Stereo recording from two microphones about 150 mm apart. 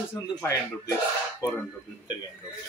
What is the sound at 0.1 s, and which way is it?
Speech, 15° left (ahead or behind).